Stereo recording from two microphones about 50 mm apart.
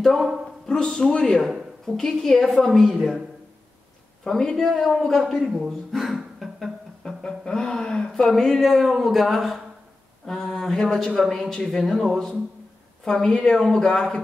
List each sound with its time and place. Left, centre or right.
0.0 s a man's voice: centre
4.2 s speech: centre
7.0 s music: centre
8.1 s a man's voice: centre